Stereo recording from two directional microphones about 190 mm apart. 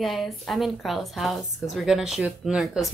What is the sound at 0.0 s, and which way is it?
A woman's voice, centre (ahead or behind).